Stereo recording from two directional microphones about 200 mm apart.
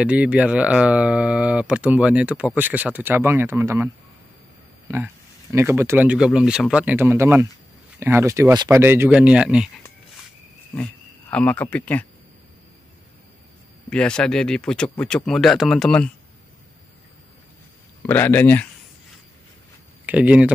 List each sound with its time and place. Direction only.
0.0 s speech: 5° right (ahead or behind)
10.7 s speech: 10° left (ahead or behind)
13.8 s speech: 5° left (ahead or behind)
18.0 s speech: 10° left (ahead or behind)
20.1 s speech: 5° right (ahead or behind)